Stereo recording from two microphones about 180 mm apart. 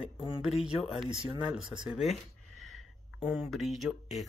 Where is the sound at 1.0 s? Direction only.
30° right (ahead or behind).